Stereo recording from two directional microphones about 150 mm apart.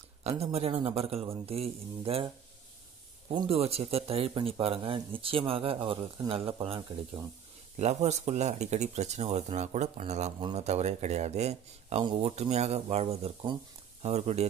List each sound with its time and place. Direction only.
0.2 s speech: 45° right (ahead or behind)
7.7 s speech: 50° right (ahead or behind)
12.0 s speech: 30° right (ahead or behind)
12.3 s speech: 45° right (ahead or behind)